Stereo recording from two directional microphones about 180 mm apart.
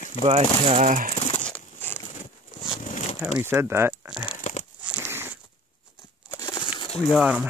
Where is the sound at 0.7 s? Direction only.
40° right (ahead or behind).